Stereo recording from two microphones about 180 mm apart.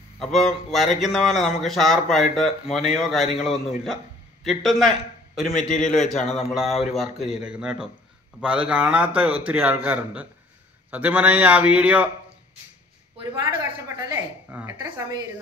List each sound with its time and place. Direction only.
0.2 s a man's voice: centre (ahead or behind)
13.8 s a man's voice: 15° right (ahead or behind)